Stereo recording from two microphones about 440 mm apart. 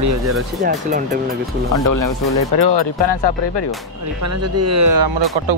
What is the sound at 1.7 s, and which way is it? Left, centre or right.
Speech, left.